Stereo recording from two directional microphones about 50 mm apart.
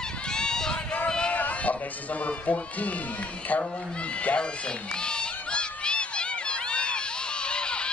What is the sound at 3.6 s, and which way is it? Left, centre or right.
Cat, left.